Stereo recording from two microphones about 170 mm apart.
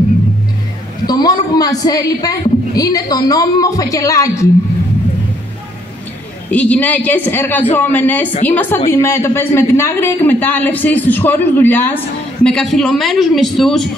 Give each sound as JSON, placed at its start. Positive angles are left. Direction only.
{"t": 1.0, "sound": "a man's voice", "side_deg": 25}
{"t": 6.5, "sound": "a woman's voice", "side_deg": 10}